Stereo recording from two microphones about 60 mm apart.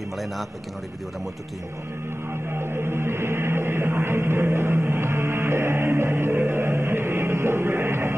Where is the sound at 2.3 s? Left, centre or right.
Right.